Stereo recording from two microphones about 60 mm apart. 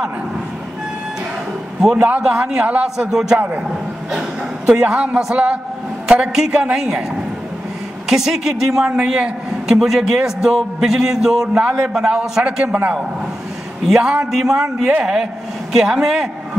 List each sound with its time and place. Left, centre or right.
1.8 s a man's voice: centre
3.0 s a man's voice: centre
3.3 s a man's voice: right
4.6 s a man's voice: centre
13.8 s a man's voice: centre